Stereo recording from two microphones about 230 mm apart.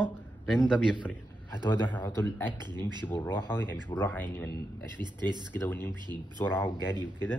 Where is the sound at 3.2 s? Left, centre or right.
Centre.